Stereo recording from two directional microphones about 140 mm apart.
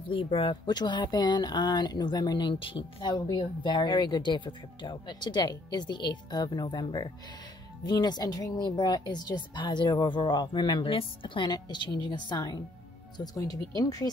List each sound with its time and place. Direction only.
0.1 s speech: 40° left (ahead or behind); by 14.1 s 25° left (ahead or behind)